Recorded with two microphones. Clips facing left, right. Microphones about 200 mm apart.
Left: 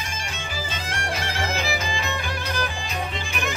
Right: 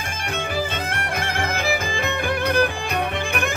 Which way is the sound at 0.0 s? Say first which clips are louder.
Right 6 dB; 60° right (ahead or behind).